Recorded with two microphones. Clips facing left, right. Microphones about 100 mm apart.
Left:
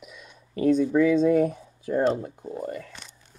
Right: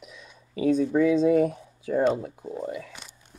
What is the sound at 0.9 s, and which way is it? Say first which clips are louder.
Speech: right 1 dB; centre (ahead or behind).